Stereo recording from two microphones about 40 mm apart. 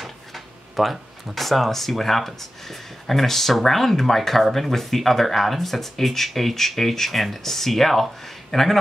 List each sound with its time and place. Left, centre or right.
0.0 s speech: centre